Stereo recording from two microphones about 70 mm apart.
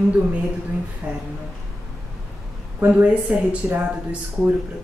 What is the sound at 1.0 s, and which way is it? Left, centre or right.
Speech, centre.